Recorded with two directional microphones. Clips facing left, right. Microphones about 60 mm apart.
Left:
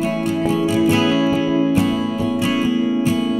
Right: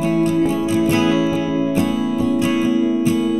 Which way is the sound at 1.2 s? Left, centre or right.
Left.